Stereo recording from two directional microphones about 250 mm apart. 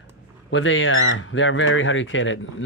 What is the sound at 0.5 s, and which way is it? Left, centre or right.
Speech, left.